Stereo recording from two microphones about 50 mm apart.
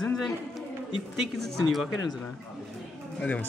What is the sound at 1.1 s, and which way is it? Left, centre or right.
Speech, centre.